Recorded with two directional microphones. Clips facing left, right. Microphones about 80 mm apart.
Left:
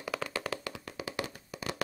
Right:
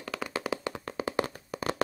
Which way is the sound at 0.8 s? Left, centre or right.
Right.